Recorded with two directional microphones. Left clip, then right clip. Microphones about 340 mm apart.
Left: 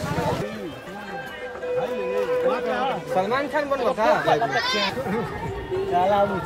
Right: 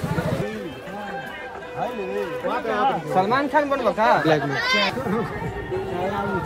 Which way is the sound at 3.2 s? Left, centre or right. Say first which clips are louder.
Right 3 dB; centre.